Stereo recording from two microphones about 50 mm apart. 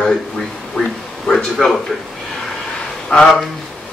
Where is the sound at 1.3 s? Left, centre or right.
Centre.